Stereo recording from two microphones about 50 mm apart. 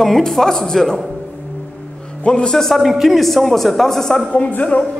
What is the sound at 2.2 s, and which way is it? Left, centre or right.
Speech, left.